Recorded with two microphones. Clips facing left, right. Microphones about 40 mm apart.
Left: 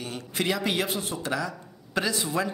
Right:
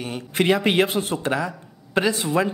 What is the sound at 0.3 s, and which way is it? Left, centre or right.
Speech, right.